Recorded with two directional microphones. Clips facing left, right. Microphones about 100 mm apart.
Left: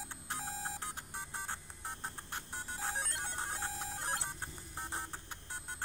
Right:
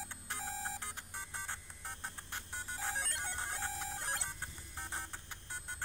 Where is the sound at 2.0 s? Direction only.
35° left (ahead or behind).